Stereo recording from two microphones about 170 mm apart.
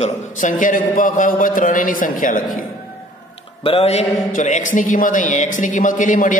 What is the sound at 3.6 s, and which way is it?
A man's voice, 35° left (ahead or behind).